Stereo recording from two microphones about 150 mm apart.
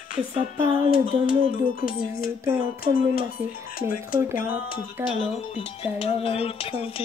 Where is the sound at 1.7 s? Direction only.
70° left (ahead or behind).